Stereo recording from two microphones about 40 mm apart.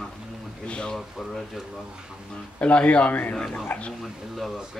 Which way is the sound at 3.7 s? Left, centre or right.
Left.